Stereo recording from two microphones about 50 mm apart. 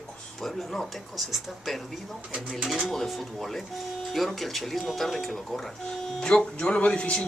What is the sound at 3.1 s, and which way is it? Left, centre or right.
Speech, centre.